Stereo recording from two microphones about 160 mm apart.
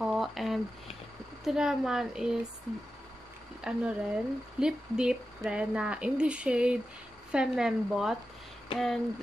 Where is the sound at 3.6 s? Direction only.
5° right (ahead or behind).